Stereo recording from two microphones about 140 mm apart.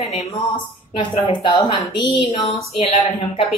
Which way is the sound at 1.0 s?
35° left (ahead or behind).